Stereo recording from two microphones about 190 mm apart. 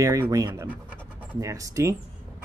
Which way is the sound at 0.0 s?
15° right (ahead or behind).